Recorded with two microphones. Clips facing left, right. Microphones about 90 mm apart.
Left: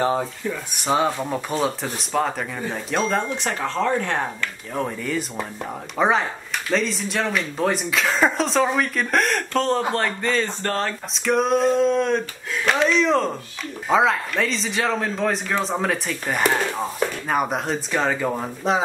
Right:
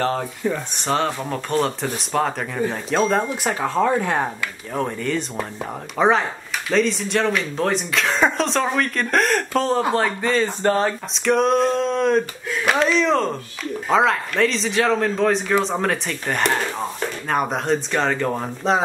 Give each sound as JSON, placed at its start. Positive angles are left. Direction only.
{"t": 0.0, "sound": "speech", "side_deg": 15}
{"t": 10.6, "sound": "speech", "side_deg": -15}
{"t": 11.1, "sound": "speech", "side_deg": 0}